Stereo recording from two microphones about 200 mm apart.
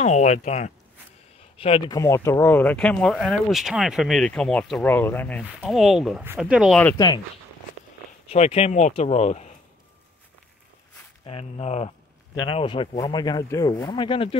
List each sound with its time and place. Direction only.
0.0 s speech: 35° left (ahead or behind)
2.0 s speech: 15° left (ahead or behind)
5.4 s speech: 5° right (ahead or behind)
6.8 s speech: 10° left (ahead or behind)
8.3 s speech: 30° left (ahead or behind)
11.2 s speech: 30° left (ahead or behind)